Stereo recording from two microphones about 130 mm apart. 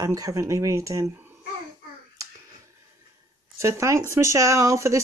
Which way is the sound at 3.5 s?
20° right (ahead or behind).